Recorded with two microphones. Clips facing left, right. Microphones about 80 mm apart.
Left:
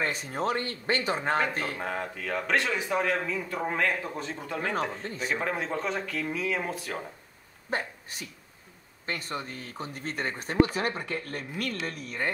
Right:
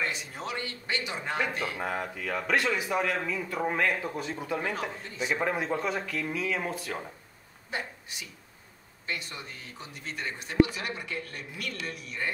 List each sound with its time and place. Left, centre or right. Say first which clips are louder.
0.0 s speech: left 5 dB; left
1.8 s speech: even; centre
5.0 s speech: left 1 dB; left
5.3 s speech: right 2 dB; centre
7.7 s speech: left 4 dB; left